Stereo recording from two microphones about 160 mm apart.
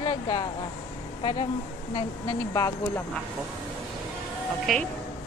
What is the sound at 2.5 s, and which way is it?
Speech, 20° left (ahead or behind).